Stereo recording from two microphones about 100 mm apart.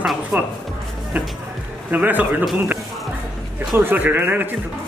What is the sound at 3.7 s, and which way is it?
Speech, 20° right (ahead or behind).